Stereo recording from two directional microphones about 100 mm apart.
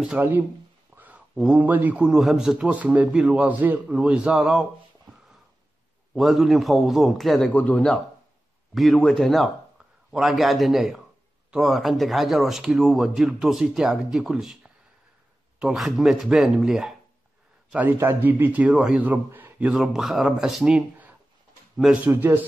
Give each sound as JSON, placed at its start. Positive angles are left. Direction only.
{"t": 0.2, "sound": "speech", "side_deg": -20}
{"t": 0.9, "sound": "a sound", "side_deg": -15}
{"t": 1.3, "sound": "speech", "side_deg": -5}
{"t": 1.6, "sound": "a man's voice", "side_deg": -15}
{"t": 2.0, "sound": "a man's voice", "side_deg": -5}
{"t": 6.1, "sound": "speech", "side_deg": 0}
{"t": 7.5, "sound": "speech", "side_deg": 15}
{"t": 15.6, "sound": "speech", "side_deg": 0}
{"t": 17.6, "sound": "speech", "side_deg": -20}
{"t": 18.7, "sound": "speech", "side_deg": -5}
{"t": 19.0, "sound": "a man's voice", "side_deg": -15}
{"t": 19.7, "sound": "speech", "side_deg": -5}
{"t": 22.1, "sound": "a man's voice", "side_deg": -15}